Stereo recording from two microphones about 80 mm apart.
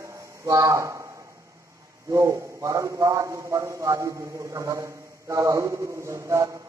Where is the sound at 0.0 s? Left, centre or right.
Right.